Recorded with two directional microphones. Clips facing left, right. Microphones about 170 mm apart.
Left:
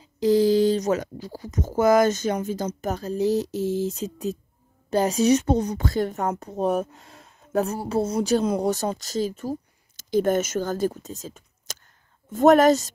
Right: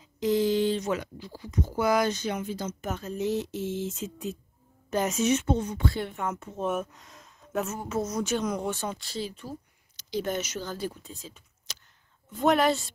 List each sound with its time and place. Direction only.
0.0 s a woman's voice: 35° left (ahead or behind)